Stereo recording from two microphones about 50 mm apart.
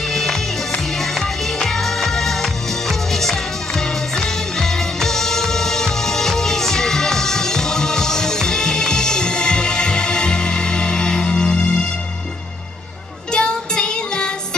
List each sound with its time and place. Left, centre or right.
0.1 s music: centre
13.3 s child singing: centre